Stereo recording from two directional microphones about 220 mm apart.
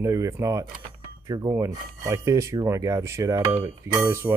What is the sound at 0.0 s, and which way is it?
Speech, 15° right (ahead or behind).